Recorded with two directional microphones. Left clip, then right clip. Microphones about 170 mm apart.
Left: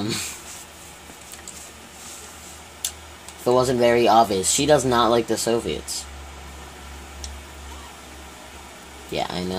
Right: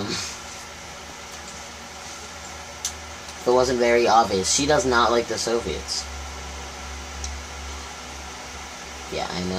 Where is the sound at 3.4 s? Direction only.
55° left (ahead or behind).